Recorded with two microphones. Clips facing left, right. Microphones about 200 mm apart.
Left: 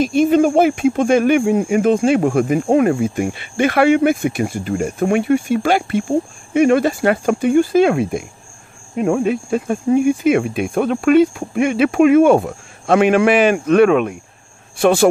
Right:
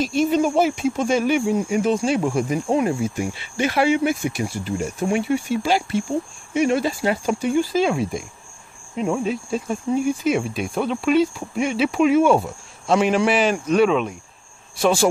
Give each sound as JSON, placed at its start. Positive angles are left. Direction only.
{"t": 0.0, "sound": "speech", "side_deg": 55}